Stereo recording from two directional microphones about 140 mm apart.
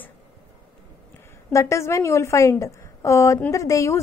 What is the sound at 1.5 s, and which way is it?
A woman's voice, 20° left (ahead or behind).